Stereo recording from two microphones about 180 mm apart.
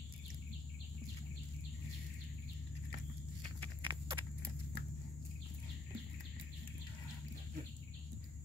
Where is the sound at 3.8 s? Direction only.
25° right (ahead or behind).